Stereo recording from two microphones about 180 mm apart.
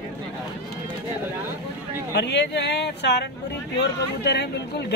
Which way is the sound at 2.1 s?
70° left (ahead or behind).